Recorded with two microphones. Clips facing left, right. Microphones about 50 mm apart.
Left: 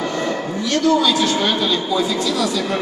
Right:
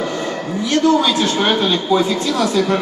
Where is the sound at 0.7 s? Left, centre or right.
Right.